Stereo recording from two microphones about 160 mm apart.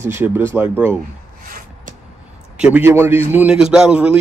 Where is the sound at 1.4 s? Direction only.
60° right (ahead or behind).